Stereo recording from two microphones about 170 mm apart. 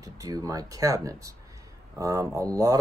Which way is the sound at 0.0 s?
20° right (ahead or behind).